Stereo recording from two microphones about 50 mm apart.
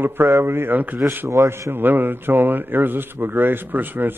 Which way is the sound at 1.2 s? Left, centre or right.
Right.